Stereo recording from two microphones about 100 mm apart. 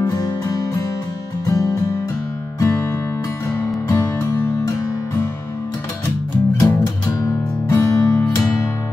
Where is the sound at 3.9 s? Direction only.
30° left (ahead or behind).